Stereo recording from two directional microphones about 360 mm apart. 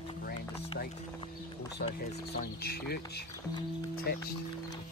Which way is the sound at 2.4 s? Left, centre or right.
Left.